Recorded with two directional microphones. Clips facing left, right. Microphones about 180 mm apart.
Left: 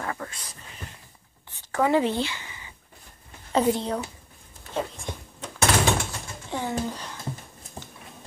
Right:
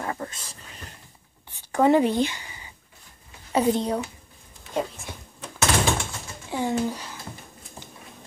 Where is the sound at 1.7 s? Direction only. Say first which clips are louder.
Right 3 dB; 20° right (ahead or behind).